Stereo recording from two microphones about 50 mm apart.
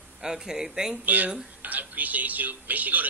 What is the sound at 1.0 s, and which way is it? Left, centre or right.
Speech, right.